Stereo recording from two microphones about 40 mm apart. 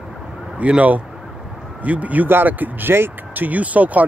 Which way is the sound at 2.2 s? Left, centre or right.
Right.